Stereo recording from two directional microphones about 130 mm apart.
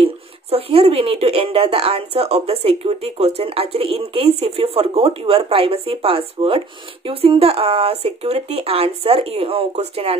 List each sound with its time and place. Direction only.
0.0 s speech: 50° right (ahead or behind)